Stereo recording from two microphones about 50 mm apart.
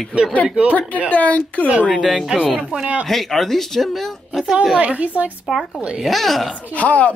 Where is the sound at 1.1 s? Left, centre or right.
Left.